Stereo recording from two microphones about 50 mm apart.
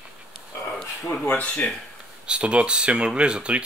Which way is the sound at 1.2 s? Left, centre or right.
Left.